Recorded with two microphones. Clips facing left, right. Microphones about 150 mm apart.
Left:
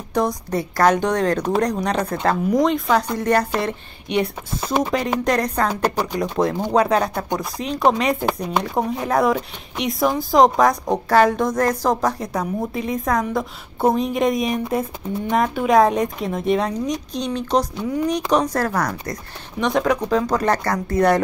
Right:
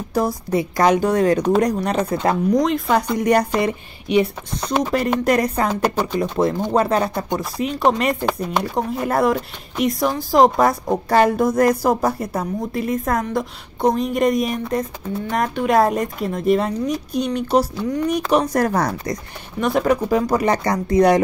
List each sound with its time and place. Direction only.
0.1 s a woman's voice: 5° right (ahead or behind)
3.2 s a woman's voice: 15° right (ahead or behind)
4.1 s a woman's voice: centre (ahead or behind)
6.4 s a woman's voice: centre (ahead or behind)
18.7 s speech: 25° right (ahead or behind)
19.6 s a woman's voice: 5° right (ahead or behind)